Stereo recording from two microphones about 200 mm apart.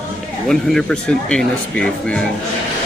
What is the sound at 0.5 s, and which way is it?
Speech, centre (ahead or behind).